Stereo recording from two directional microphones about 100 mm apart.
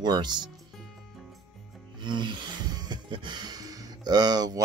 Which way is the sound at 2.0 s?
50° right (ahead or behind).